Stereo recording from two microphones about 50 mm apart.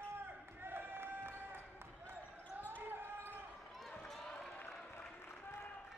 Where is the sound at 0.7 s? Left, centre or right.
Right.